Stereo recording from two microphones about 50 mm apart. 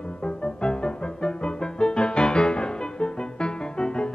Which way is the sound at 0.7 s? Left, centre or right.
Centre.